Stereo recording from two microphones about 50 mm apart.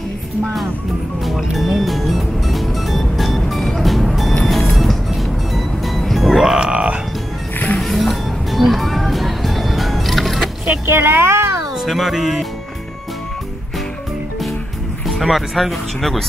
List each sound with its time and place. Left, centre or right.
1.2 s music: centre
6.6 s music: right
7.5 s music: left
7.8 s music: centre
10.9 s speech: right
11.9 s speech: centre
15.0 s speech: centre